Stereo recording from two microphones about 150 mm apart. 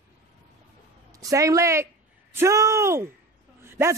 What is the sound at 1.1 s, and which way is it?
Speech, 20° right (ahead or behind).